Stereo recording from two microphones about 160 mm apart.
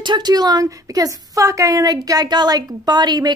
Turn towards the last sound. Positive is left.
turn(degrees=-25)  # may be behind; listen again after turning